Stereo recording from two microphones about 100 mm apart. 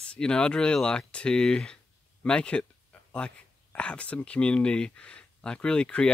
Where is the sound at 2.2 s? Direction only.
10° left (ahead or behind).